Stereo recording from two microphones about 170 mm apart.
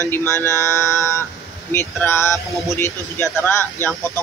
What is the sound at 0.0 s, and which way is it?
Speech, 15° left (ahead or behind).